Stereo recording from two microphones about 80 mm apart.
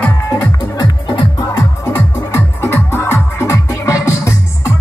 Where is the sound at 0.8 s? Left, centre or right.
Left.